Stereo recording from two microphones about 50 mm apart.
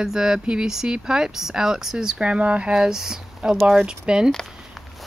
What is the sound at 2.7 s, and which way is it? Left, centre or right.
Speech, centre.